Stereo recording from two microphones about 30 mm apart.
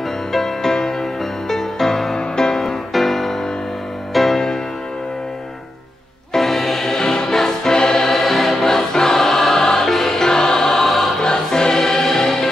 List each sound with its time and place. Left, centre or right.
0.3 s music: centre
2.9 s music: centre
6.3 s music: centre
8.1 s choir: centre
9.8 s music: centre
10.1 s music: centre
10.9 s choir: centre
11.1 s music: left